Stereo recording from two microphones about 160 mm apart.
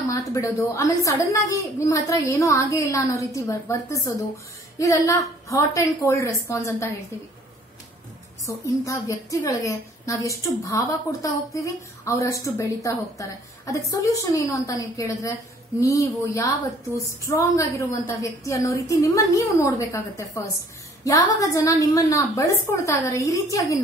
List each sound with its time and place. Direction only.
0.1 s a woman's voice: 20° left (ahead or behind)
8.5 s a woman's voice: 20° left (ahead or behind)